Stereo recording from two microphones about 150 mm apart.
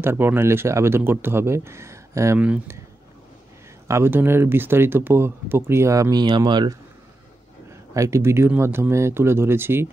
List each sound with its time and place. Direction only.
0.0 s speech: 15° right (ahead or behind)
2.4 s speech: 10° right (ahead or behind)
3.8 s speech: 20° right (ahead or behind)
7.9 s speech: 20° right (ahead or behind)